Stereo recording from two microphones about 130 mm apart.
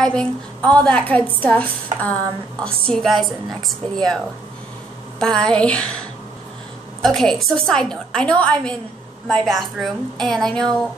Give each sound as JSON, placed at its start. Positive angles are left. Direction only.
{"t": 0.0, "sound": "a woman's voice", "side_deg": 5}
{"t": 5.2, "sound": "a woman's voice", "side_deg": 5}